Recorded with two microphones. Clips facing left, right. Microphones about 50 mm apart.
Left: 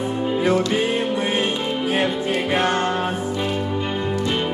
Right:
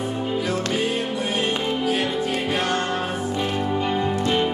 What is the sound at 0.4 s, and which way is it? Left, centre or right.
Music, left.